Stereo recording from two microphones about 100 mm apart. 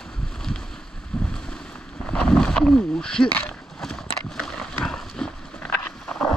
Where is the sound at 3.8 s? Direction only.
5° left (ahead or behind).